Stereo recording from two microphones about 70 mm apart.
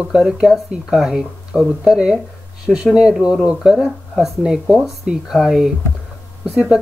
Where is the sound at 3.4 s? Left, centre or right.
Centre.